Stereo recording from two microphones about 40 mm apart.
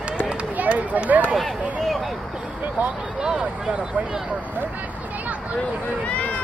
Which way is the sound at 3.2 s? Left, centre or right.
Centre.